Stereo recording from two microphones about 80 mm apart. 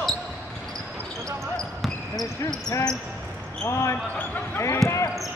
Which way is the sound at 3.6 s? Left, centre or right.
Left.